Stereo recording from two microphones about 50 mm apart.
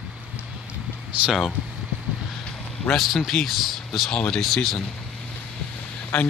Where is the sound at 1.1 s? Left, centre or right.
Right.